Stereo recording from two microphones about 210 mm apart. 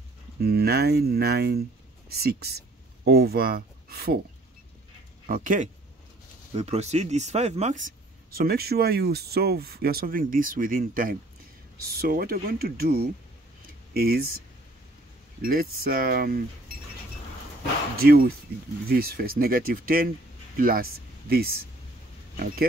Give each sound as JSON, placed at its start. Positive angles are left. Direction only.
{"t": 0.4, "sound": "speech", "side_deg": -50}
{"t": 5.2, "sound": "speech", "side_deg": -40}
{"t": 15.4, "sound": "speech", "side_deg": -45}
{"t": 17.9, "sound": "speech", "side_deg": -45}